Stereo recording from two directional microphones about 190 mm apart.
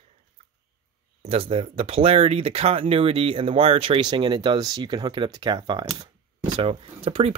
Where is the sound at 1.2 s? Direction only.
30° right (ahead or behind).